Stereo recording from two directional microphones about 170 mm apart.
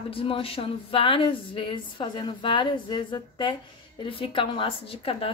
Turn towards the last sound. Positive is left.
turn(degrees=30)  # may be behind; listen again after turning